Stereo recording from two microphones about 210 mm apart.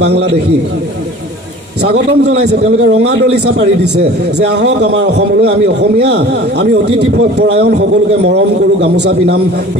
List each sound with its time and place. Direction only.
0.0 s a man's voice: 55° right (ahead or behind)
1.8 s a man's voice: 55° right (ahead or behind)
8.8 s a man's voice: 55° right (ahead or behind)